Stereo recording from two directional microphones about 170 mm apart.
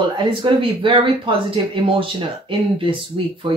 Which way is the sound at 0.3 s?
30° right (ahead or behind).